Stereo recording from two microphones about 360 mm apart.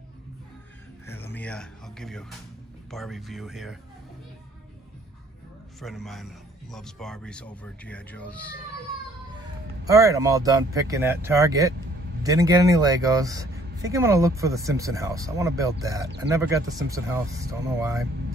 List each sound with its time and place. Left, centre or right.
1.0 s music: centre
2.9 s a man's voice: centre
5.8 s a man's voice: centre
9.8 s speech: centre